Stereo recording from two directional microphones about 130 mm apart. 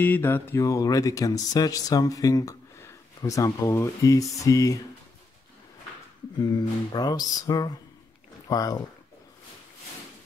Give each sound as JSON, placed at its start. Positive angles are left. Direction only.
{"t": 0.0, "sound": "speech", "side_deg": 15}
{"t": 6.4, "sound": "speech", "side_deg": 30}